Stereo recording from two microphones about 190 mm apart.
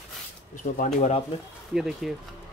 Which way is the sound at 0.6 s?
35° left (ahead or behind).